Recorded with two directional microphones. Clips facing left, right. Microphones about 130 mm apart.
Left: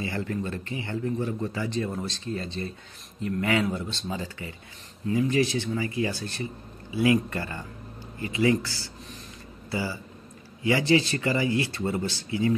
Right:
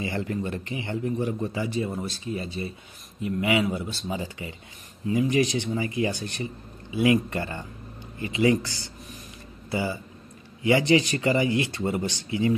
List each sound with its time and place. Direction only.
0.0 s a man's voice: 20° right (ahead or behind)